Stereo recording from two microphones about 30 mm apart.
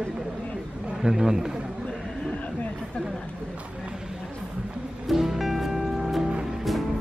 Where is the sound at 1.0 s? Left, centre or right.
Centre.